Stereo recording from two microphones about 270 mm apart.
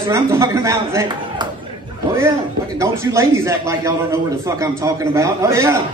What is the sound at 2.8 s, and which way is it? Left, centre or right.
Speech, centre.